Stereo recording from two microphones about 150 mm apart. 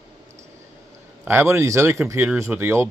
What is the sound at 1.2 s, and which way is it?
Speech, 15° right (ahead or behind).